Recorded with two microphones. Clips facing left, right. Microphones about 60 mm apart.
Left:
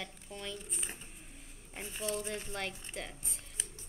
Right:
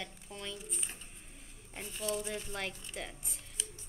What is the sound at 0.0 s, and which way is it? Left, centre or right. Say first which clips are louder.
Speech: even; centre.